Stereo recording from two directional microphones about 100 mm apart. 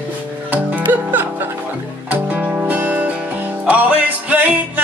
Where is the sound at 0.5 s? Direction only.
15° right (ahead or behind).